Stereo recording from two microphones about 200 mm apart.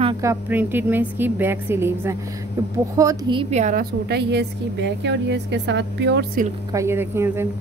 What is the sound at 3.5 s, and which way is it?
A woman's voice, 40° right (ahead or behind).